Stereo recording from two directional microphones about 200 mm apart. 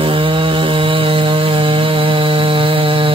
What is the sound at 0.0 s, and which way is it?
Mantra, 25° right (ahead or behind).